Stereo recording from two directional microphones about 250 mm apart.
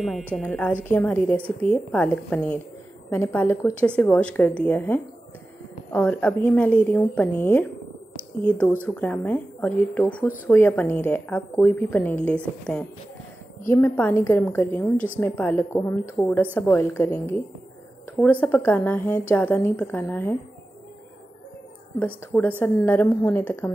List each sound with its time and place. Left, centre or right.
0.3 s a woman's voice: centre
22.0 s a woman's voice: centre